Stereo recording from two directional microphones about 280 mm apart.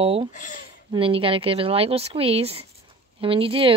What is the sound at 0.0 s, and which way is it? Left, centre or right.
Speech, centre.